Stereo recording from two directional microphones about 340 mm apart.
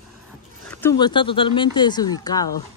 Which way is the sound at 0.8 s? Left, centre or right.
Centre.